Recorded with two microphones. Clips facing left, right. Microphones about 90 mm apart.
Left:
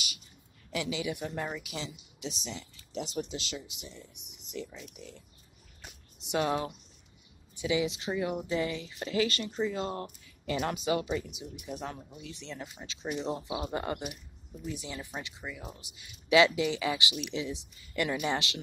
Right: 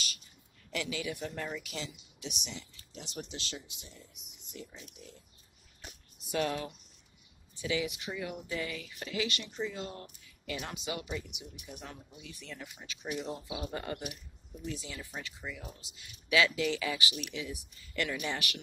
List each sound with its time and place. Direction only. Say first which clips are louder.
0.7 s a woman's voice: left 3 dB; 15° left (ahead or behind)
1.6 s a woman's voice: left 2 dB; 10° left (ahead or behind)
1.9 s speech: left 4 dB; 30° left (ahead or behind)
3.4 s speech: left 4 dB; 90° left
4.6 s speech: left 7 dB; 70° left (ahead or behind)
6.3 s speech: left 3 dB; 25° left (ahead or behind)
8.1 s speech: left 7 dB; 35° left (ahead or behind)
9.1 s speech: left 6 dB; 40° left (ahead or behind)
12.2 s speech: left 4 dB; 25° left (ahead or behind)
14.6 s speech: left 2 dB; 15° left (ahead or behind)
16.3 s speech: left 6 dB; 30° left (ahead or behind)
16.5 s a woman's voice: left 3 dB; 15° left (ahead or behind)